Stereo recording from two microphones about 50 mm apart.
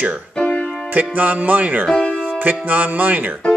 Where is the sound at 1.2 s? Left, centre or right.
Right.